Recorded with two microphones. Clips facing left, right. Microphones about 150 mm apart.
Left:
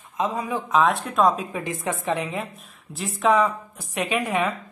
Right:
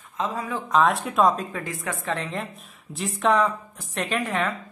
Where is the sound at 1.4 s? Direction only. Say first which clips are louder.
Left 3 dB; 15° left (ahead or behind).